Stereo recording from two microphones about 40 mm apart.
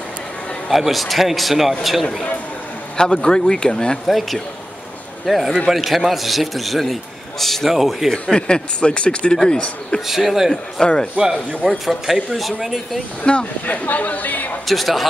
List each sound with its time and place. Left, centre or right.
0.7 s a man's voice: centre
3.0 s speech: centre
5.2 s a man's voice: centre
7.7 s a man's voice: centre
8.4 s speech: left
10.0 s a man's voice: centre
10.5 s a man's voice: centre
11.8 s a man's voice: centre
13.2 s speech: left
13.7 s speech: left
14.7 s a man's voice: centre